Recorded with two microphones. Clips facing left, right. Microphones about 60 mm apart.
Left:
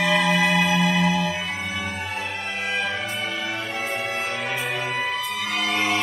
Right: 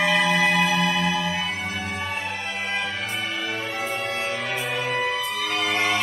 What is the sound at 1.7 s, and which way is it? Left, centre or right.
Music, left.